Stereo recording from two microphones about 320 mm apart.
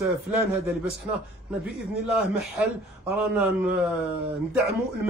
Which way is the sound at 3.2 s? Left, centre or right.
Centre.